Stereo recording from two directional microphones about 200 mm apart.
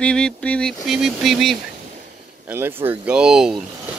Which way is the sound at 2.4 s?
10° right (ahead or behind).